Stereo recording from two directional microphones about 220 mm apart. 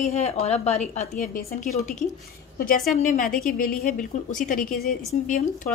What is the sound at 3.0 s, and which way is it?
A woman's voice, 35° left (ahead or behind).